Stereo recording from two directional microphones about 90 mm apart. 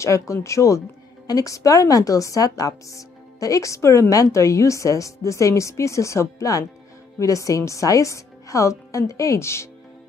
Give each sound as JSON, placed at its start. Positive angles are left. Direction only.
{"t": 0.0, "sound": "a woman's voice", "side_deg": 35}